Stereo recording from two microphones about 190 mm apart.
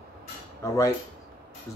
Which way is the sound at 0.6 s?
15° left (ahead or behind).